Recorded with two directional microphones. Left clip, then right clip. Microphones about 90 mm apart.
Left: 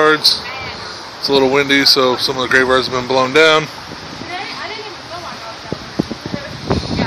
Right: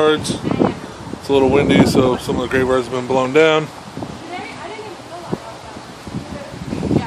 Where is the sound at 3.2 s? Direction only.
5° right (ahead or behind).